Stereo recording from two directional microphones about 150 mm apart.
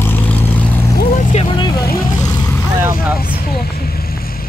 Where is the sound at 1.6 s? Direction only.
25° left (ahead or behind).